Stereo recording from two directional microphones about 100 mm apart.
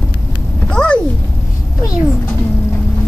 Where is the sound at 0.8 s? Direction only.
10° left (ahead or behind).